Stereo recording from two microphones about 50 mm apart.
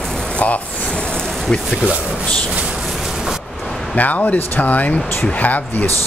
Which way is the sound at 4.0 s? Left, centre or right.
Left.